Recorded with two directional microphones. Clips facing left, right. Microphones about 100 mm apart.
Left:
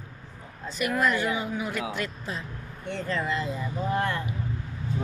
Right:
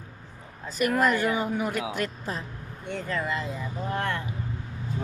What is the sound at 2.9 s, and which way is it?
Speech, 5° right (ahead or behind).